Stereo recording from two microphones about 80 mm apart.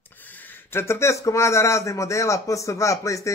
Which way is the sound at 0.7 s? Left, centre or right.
Left.